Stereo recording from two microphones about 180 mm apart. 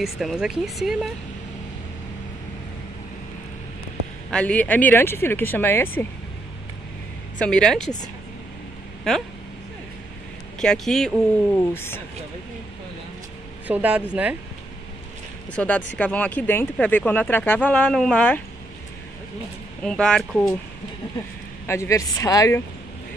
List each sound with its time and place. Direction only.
0.0 s speech: centre (ahead or behind)
4.3 s speech: 5° left (ahead or behind)
7.3 s speech: 5° left (ahead or behind)
9.1 s speech: centre (ahead or behind)
10.6 s speech: centre (ahead or behind)
11.5 s speech: 10° left (ahead or behind)
13.7 s speech: 10° right (ahead or behind)
15.5 s speech: 5° left (ahead or behind)
19.8 s speech: 5° left (ahead or behind)
21.6 s speech: 15° left (ahead or behind)